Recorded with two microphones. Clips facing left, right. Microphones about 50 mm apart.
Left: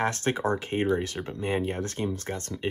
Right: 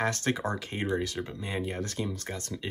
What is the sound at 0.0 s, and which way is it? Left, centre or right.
Speech, left.